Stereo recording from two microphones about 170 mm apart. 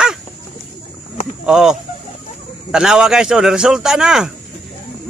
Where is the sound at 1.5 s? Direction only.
5° right (ahead or behind).